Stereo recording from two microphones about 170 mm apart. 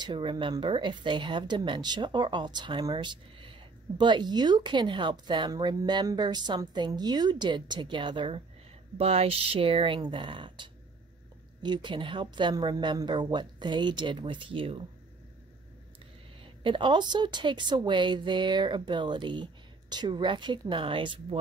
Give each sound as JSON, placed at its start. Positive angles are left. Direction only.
{"t": 0.0, "sound": "speech", "side_deg": -30}
{"t": 16.6, "sound": "speech", "side_deg": -30}